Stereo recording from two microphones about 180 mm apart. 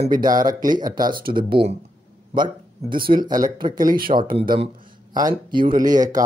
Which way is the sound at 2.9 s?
50° right (ahead or behind).